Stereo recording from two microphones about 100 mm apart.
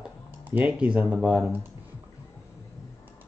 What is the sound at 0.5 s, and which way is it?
Speech, 15° right (ahead or behind).